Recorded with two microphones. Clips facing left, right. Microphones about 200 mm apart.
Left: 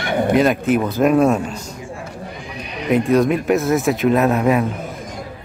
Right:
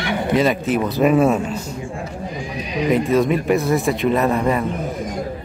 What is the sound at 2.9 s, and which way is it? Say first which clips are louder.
Speech: left 2 dB; centre (ahead or behind).